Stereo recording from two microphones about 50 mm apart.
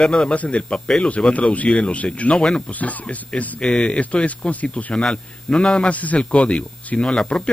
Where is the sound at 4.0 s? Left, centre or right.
Left.